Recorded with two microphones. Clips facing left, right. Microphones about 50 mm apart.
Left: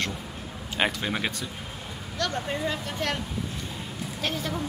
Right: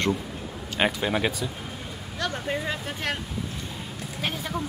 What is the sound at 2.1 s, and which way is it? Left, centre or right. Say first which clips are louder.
Speech: even; centre.